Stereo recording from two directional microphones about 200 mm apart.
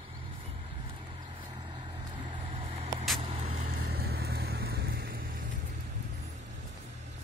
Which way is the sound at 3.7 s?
50° right (ahead or behind).